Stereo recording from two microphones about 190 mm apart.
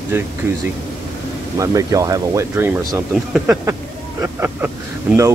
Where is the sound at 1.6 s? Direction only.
15° right (ahead or behind).